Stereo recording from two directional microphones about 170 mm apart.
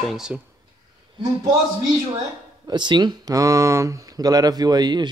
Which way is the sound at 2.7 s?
25° right (ahead or behind).